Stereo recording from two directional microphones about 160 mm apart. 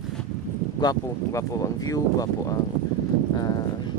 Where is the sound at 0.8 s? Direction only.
20° left (ahead or behind).